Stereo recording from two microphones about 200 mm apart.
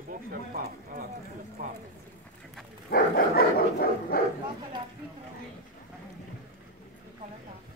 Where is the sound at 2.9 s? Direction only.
45° left (ahead or behind).